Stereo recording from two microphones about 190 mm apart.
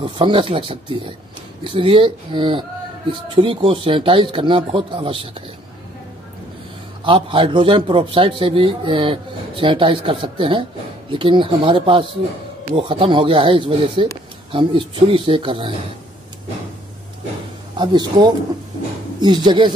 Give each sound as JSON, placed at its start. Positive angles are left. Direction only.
{"t": 0.0, "sound": "a man's voice", "side_deg": -25}
{"t": 7.1, "sound": "a man's voice", "side_deg": -25}
{"t": 17.7, "sound": "a man's voice", "side_deg": -20}